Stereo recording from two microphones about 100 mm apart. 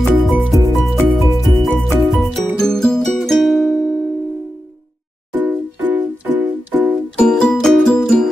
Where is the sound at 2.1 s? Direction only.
5° left (ahead or behind).